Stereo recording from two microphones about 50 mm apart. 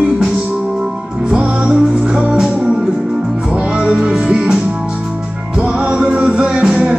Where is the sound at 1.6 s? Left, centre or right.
Right.